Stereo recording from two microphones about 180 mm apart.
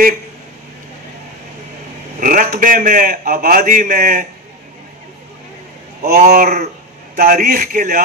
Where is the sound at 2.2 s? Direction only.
50° right (ahead or behind).